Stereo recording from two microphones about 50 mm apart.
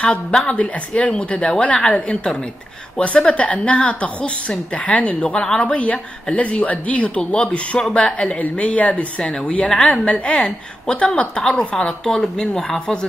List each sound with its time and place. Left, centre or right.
0.0 s a woman's voice: centre